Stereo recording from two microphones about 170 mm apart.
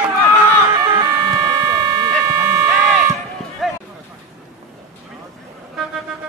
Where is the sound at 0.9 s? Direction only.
15° right (ahead or behind).